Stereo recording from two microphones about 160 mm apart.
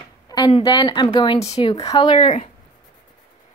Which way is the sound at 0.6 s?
25° left (ahead or behind).